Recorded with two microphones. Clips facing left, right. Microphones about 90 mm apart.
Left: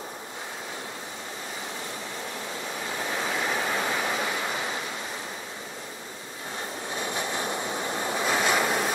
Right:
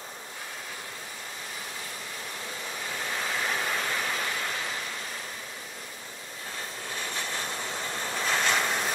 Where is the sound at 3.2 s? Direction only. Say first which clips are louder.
Left 2 dB; 10° left (ahead or behind).